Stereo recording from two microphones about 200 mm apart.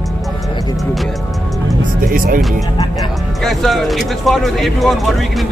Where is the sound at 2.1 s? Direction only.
45° right (ahead or behind).